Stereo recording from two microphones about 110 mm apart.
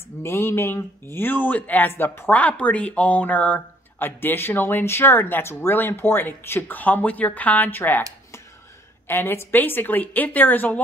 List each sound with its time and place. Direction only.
0.2 s speech: 25° left (ahead or behind)
9.0 s a woman's voice: 20° left (ahead or behind)